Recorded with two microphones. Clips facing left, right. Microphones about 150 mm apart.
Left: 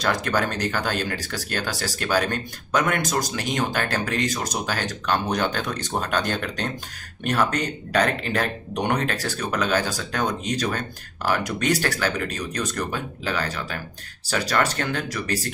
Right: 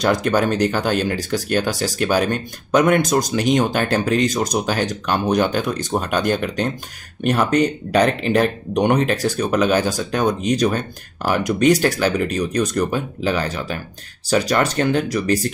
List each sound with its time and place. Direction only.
0.0 s speech: 20° right (ahead or behind)